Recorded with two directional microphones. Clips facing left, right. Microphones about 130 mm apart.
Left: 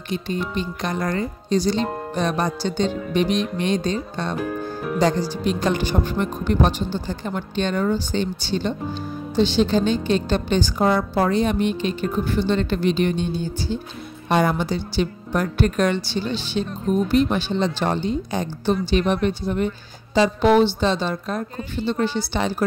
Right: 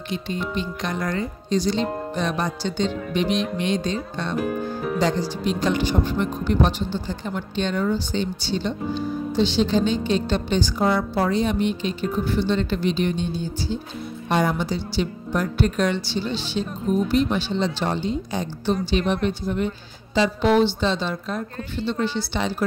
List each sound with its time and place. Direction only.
0.1 s a woman's voice: 45° left (ahead or behind)